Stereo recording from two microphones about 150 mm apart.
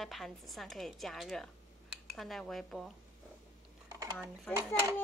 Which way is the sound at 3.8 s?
25° right (ahead or behind).